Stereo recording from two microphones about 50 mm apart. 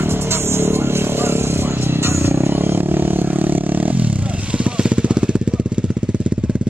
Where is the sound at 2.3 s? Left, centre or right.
Right.